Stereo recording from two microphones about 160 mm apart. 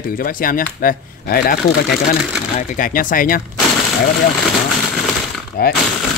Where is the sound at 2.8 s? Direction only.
60° left (ahead or behind).